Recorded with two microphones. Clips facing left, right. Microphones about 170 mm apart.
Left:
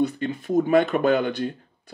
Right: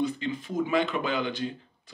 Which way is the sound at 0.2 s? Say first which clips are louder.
Left 7 dB; 50° left (ahead or behind).